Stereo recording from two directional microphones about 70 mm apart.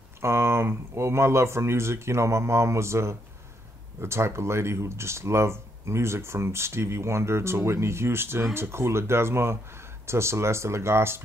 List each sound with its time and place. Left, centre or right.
0.2 s speech: right